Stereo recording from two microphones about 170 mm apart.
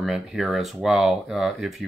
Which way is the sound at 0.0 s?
Centre (ahead or behind).